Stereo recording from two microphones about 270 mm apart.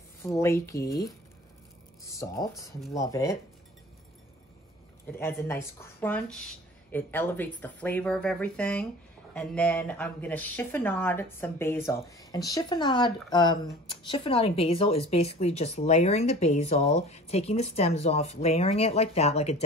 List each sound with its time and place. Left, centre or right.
0.2 s speech: centre
2.0 s speech: centre
5.1 s speech: centre